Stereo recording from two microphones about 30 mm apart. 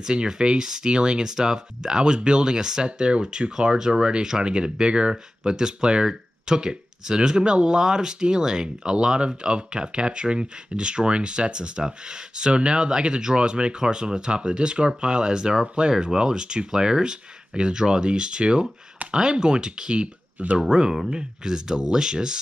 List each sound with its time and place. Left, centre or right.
0.0 s speech: right
8.8 s speech: right